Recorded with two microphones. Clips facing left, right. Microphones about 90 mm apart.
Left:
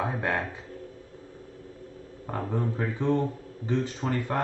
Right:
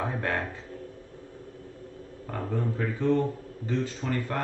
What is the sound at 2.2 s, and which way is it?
Speech, 20° left (ahead or behind).